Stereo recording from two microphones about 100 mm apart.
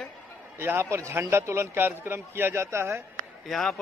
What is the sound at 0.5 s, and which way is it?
A man's voice, 25° right (ahead or behind).